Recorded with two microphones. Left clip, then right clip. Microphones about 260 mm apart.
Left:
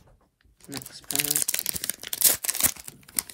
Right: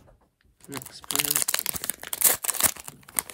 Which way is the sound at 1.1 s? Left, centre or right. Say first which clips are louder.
Right 1 dB; right.